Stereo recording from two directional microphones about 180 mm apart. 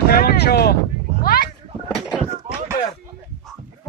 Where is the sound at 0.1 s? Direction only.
55° left (ahead or behind).